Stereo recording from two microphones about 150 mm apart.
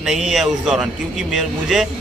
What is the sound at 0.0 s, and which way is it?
A man's voice, centre (ahead or behind).